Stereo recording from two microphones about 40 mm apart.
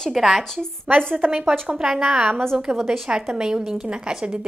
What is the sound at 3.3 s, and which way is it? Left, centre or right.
A woman's voice, centre.